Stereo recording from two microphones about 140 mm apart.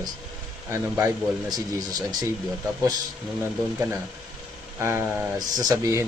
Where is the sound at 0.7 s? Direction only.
20° right (ahead or behind).